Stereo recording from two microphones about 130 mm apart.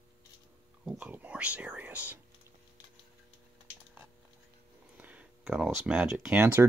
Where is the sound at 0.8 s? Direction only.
15° right (ahead or behind).